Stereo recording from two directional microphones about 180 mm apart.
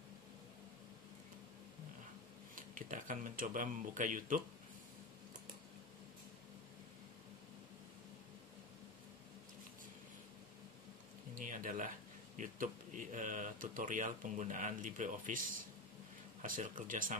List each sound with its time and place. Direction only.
2.5 s speech: 50° right (ahead or behind)
11.3 s music: 50° right (ahead or behind)
12.4 s speech: 45° right (ahead or behind)